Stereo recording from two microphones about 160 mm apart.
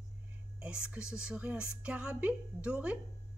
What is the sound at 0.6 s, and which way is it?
A woman's voice, 5° right (ahead or behind).